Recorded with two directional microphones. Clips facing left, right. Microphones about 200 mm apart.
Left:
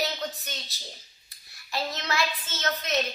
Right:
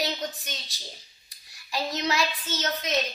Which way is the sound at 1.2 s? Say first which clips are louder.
Even; 15° right (ahead or behind).